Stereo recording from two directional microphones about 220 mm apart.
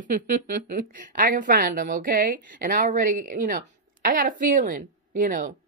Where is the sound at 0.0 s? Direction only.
35° right (ahead or behind).